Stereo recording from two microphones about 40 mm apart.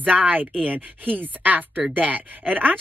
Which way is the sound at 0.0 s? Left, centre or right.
Right.